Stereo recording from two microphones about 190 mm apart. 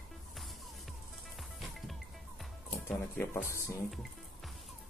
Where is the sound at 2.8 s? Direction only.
10° left (ahead or behind).